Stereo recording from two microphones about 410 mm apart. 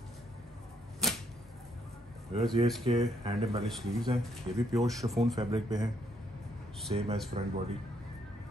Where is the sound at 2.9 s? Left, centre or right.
Centre.